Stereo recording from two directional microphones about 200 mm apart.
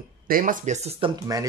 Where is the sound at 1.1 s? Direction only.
15° right (ahead or behind).